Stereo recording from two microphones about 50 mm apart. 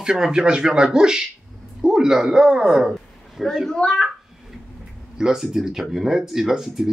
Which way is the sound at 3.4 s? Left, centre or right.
Centre.